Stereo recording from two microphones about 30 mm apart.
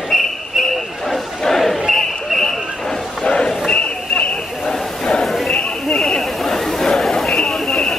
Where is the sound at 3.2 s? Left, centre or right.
Left.